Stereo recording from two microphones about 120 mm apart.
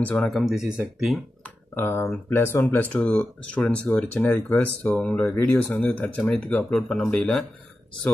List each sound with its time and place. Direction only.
0.0 s speech: 5° left (ahead or behind)
1.8 s speech: 20° left (ahead or behind)
5.2 s speech: 20° left (ahead or behind)
5.7 s speech: 10° left (ahead or behind)